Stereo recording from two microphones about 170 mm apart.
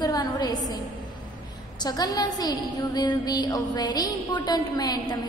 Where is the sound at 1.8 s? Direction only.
25° left (ahead or behind).